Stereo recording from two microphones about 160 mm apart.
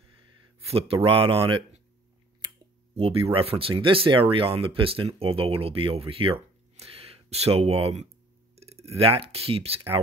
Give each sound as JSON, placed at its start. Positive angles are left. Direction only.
{"t": 0.7, "sound": "speech", "side_deg": -35}